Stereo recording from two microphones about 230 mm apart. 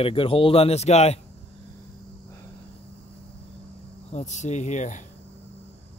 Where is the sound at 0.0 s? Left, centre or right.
Left.